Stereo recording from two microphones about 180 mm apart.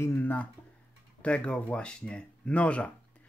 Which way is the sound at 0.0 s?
10° left (ahead or behind).